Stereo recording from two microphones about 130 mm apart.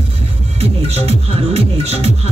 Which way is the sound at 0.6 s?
50° right (ahead or behind).